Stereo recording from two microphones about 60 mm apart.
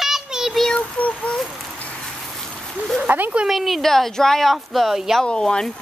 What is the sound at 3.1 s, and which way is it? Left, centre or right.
Speech, right.